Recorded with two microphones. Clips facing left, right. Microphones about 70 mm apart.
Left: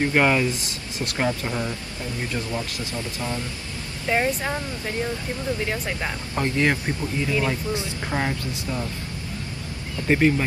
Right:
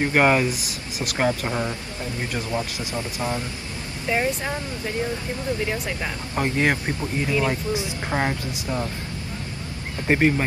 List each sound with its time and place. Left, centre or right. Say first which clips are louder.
0.0 s speech: right 1 dB; right
4.1 s speech: left 1 dB; centre
6.3 s speech: even; centre
10.0 s speech: even; right